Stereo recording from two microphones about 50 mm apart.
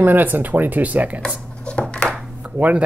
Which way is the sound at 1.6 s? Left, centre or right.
Left.